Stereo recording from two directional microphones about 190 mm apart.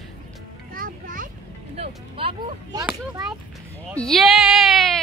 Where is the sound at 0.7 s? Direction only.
45° right (ahead or behind).